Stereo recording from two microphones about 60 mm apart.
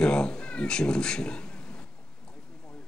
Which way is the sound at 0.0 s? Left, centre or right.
Centre.